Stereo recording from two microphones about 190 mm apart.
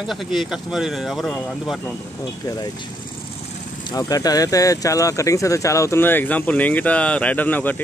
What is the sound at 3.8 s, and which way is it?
Speech, 20° left (ahead or behind).